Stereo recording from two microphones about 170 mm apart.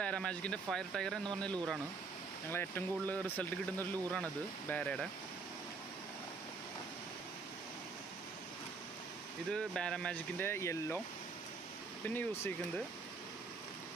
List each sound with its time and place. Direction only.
0.0 s speech: 5° left (ahead or behind)
9.5 s speech: 5° left (ahead or behind)
12.1 s speech: 10° left (ahead or behind)